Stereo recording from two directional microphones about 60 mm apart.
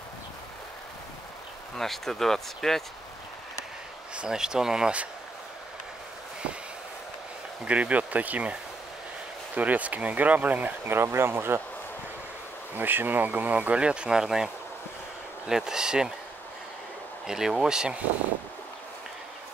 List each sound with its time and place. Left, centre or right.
1.8 s speech: centre
4.1 s speech: centre
7.6 s speech: right
9.6 s speech: right
10.9 s speech: right
12.7 s speech: right; by 16.1 s centre
17.3 s speech: centre